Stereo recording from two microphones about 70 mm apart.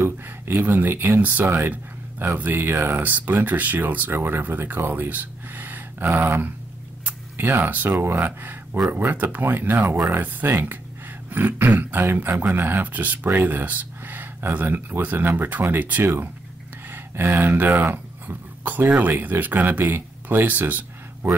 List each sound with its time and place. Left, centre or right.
0.0 s speech: right
7.1 s a sound: right
7.9 s speech: right